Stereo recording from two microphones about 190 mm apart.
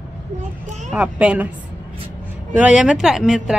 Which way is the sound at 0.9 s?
5° right (ahead or behind).